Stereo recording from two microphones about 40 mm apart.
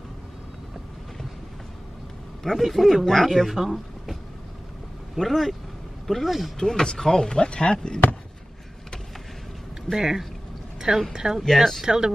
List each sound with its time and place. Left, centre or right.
2.4 s speech: centre
5.2 s speech: centre
6.6 s speech: centre
9.9 s speech: centre
11.4 s speech: centre
11.8 s speech: centre